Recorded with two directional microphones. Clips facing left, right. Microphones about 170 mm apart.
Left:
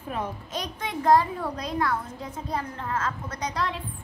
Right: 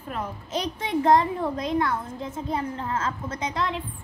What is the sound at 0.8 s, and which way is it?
A child's voice, 20° right (ahead or behind).